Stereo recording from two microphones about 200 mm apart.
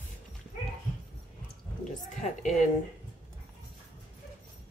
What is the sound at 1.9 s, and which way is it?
Speech, 40° left (ahead or behind).